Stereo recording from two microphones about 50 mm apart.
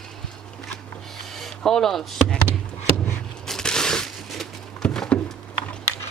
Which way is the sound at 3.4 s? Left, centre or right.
Centre.